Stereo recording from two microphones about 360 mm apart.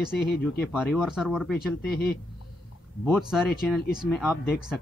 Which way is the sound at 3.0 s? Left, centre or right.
Centre.